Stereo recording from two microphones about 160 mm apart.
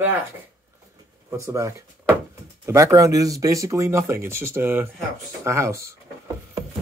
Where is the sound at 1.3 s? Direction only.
20° right (ahead or behind).